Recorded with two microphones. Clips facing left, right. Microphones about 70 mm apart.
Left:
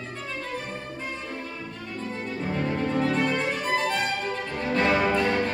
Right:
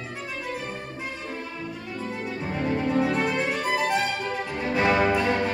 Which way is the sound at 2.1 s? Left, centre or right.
Centre.